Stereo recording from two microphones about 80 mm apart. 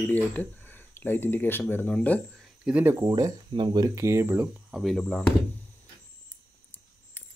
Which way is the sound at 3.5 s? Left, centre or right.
Right.